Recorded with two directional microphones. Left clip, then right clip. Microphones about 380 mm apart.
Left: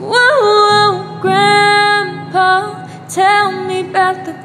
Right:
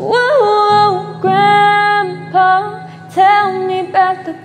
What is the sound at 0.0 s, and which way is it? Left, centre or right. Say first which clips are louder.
Music: left 1 dB; centre.